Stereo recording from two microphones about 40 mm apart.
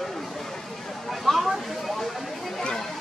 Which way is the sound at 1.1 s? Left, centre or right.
Centre.